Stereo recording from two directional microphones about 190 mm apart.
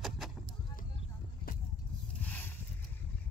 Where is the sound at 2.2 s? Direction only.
10° left (ahead or behind).